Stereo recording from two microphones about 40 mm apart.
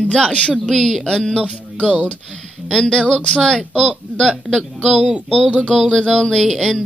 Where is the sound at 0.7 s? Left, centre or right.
Centre.